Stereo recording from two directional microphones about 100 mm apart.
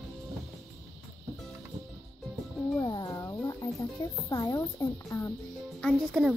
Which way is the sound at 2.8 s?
40° left (ahead or behind).